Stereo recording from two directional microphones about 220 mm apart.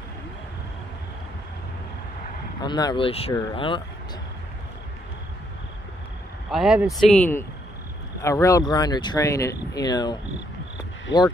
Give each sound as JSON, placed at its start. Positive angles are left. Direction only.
{"t": 2.6, "sound": "speech", "side_deg": 20}
{"t": 6.5, "sound": "speech", "side_deg": -5}